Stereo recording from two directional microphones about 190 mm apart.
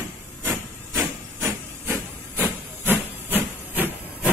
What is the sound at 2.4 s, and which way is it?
Hiss, 10° right (ahead or behind).